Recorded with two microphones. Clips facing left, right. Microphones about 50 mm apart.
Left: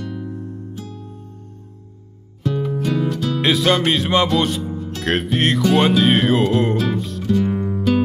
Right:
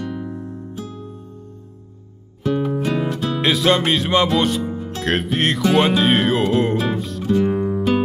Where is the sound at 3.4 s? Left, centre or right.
Centre.